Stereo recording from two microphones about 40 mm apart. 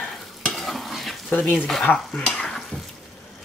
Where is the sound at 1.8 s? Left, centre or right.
Left.